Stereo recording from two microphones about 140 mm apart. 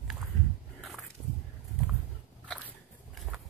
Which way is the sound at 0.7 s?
Centre (ahead or behind).